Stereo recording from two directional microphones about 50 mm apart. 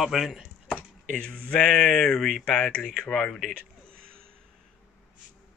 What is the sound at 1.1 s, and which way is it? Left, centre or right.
Speech, left.